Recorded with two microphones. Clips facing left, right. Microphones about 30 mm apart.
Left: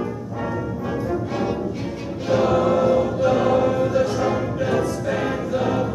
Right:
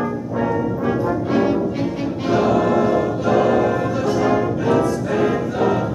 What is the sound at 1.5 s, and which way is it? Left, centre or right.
Music, centre.